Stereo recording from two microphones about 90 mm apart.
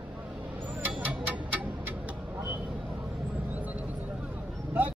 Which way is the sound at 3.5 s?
15° right (ahead or behind).